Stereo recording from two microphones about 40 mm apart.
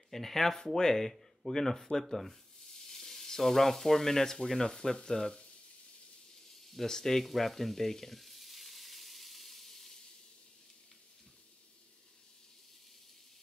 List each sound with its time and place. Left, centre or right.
0.1 s speech: centre
6.7 s frying: centre